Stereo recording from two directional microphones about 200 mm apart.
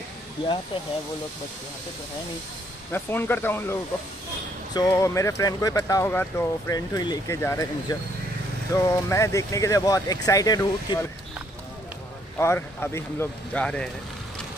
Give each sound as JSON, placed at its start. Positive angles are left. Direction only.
{"t": 2.9, "sound": "speech", "side_deg": 10}
{"t": 4.7, "sound": "speech", "side_deg": 15}
{"t": 12.4, "sound": "speech", "side_deg": 10}